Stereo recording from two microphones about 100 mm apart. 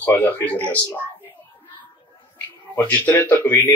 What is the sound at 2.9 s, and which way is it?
Speech, 20° left (ahead or behind).